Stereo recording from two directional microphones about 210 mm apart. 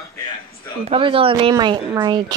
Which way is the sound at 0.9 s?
25° right (ahead or behind).